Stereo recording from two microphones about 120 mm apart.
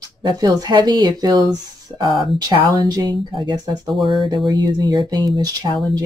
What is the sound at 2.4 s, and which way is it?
Speech, 30° right (ahead or behind).